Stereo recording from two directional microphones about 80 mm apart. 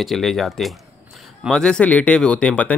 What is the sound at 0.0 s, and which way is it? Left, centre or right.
Speech, centre.